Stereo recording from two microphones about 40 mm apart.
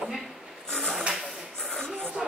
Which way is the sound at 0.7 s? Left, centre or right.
Centre.